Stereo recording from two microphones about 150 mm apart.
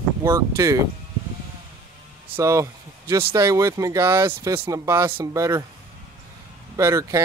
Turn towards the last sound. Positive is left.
turn(degrees=-20)  # may be behind; listen again after turning